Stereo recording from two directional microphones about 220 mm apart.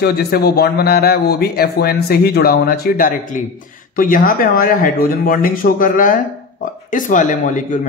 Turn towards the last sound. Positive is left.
turn(degrees=35)  # may be behind; listen again after turning